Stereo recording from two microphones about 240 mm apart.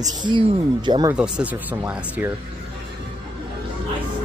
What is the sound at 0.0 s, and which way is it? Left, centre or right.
Speech, centre.